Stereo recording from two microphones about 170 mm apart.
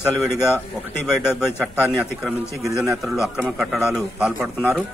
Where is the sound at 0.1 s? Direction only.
Centre (ahead or behind).